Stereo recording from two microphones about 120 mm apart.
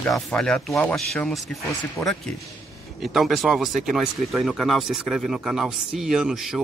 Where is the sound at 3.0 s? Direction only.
Centre (ahead or behind).